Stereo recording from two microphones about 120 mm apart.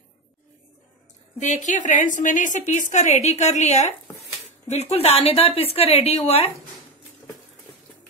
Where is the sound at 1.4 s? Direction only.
90° left; by 6.5 s 60° left (ahead or behind).